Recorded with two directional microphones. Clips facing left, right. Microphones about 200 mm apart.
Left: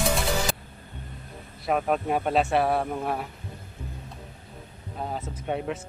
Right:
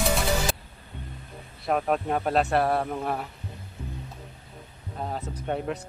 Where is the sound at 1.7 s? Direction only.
Centre (ahead or behind).